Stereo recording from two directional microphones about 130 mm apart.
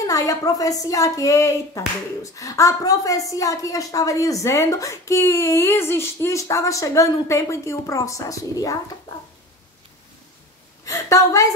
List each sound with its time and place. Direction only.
0.0 s a woman's voice: 25° left (ahead or behind)
10.9 s a woman's voice: 25° left (ahead or behind)